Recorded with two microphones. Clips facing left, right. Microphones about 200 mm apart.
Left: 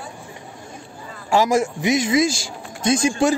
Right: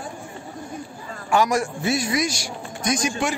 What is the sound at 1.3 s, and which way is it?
Speech, 25° left (ahead or behind).